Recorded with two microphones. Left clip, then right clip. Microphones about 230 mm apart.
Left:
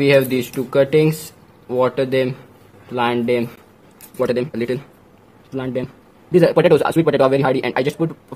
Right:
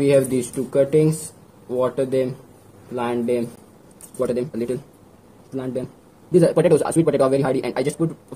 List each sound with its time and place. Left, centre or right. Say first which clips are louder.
0.0 s a man's voice: left 3 dB; left